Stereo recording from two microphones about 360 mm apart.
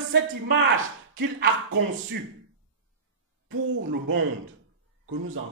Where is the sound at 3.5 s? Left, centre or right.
Right.